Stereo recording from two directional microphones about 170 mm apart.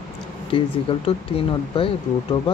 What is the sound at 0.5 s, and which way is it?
Speech, 30° left (ahead or behind).